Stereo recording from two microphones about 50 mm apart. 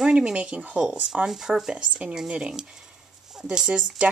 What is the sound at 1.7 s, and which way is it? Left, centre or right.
Speech, right.